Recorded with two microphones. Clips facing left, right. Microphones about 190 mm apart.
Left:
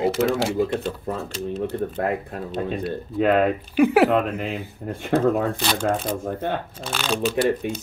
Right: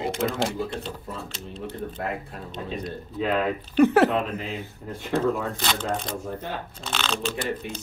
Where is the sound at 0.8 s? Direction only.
60° left (ahead or behind).